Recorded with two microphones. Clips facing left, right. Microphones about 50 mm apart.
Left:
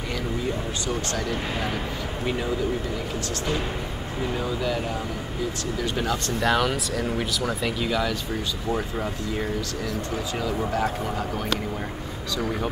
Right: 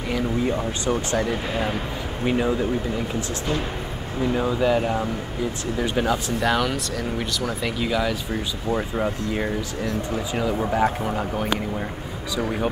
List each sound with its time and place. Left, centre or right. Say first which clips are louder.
0.8 s speech: right 6 dB; right
4.4 s speech: right 8 dB; right
5.9 s speech: right 5 dB; centre
6.4 s speech: left 2 dB; centre